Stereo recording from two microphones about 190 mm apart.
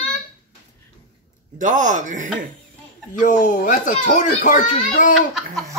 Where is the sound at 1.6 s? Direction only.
40° right (ahead or behind).